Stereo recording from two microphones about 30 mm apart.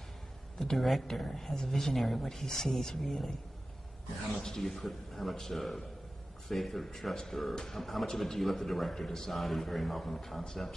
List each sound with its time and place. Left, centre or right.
0.6 s a man's voice: centre
1.2 s speech: centre
2.0 s speech: centre
4.4 s a man's voice: centre
8.9 s speech: centre
9.3 s a man's voice: centre